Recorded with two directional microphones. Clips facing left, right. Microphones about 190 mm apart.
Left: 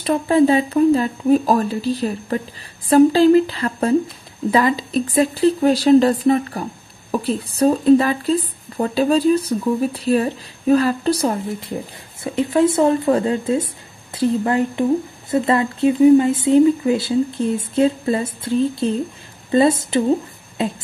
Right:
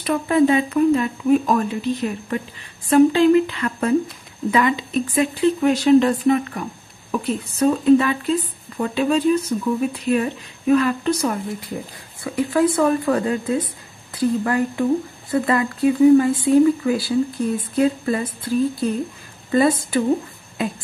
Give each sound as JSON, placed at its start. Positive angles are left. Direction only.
{"t": 0.0, "sound": "speech", "side_deg": 30}
{"t": 12.2, "sound": "speech", "side_deg": 20}